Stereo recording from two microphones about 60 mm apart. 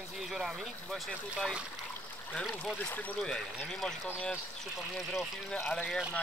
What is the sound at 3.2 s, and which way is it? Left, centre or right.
Speech, centre.